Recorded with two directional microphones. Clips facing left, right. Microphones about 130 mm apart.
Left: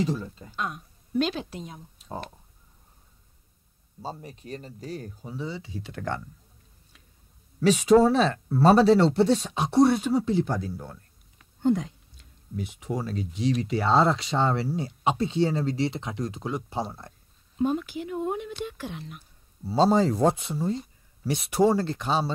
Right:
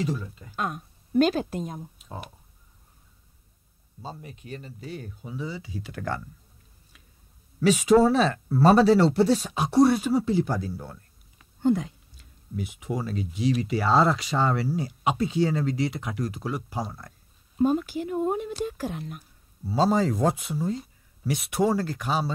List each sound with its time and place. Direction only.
0.6 s a woman's voice: 45° right (ahead or behind)
4.0 s speech: 35° left (ahead or behind)
5.7 s speech: centre (ahead or behind)
7.6 s speech: 5° right (ahead or behind)
14.3 s speech: 25° left (ahead or behind)
17.7 s speech: 40° right (ahead or behind)
19.7 s speech: 30° left (ahead or behind)
21.6 s speech: 25° left (ahead or behind)